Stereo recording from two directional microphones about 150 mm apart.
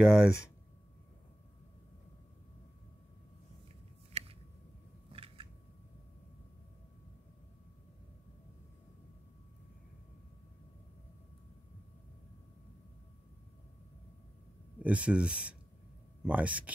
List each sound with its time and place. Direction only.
0.0 s speech: 5° right (ahead or behind)
4.1 s a sound: 40° right (ahead or behind)
5.1 s scissors: 35° right (ahead or behind)
14.8 s speech: 10° right (ahead or behind)